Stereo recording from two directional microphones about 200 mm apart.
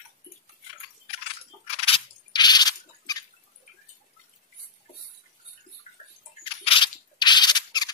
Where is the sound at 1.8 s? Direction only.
25° left (ahead or behind).